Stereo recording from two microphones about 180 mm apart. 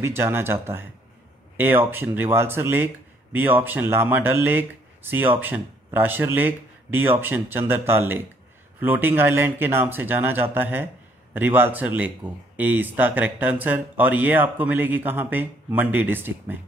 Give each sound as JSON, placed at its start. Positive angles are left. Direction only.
{"t": 0.0, "sound": "speech", "side_deg": -15}